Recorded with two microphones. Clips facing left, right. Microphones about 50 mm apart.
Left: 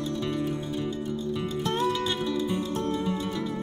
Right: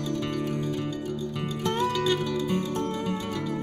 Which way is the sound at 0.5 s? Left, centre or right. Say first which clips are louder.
Right 1 dB; right.